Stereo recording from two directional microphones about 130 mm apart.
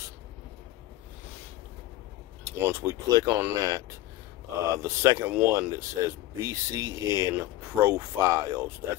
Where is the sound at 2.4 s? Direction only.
20° right (ahead or behind).